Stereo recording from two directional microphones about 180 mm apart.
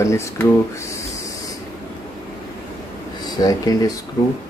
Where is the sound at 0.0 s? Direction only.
15° left (ahead or behind).